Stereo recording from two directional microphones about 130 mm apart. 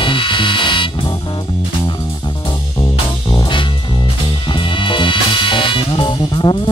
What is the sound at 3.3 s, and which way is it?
Music, 40° left (ahead or behind).